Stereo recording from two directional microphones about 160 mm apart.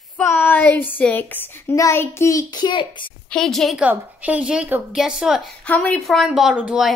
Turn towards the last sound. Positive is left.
turn(degrees=-5)  # may be behind; listen again after turning